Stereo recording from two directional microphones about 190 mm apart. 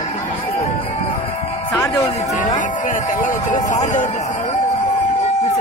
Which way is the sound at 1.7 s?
15° left (ahead or behind).